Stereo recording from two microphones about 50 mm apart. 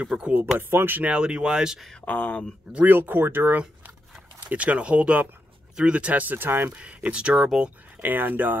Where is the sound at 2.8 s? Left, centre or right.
Right.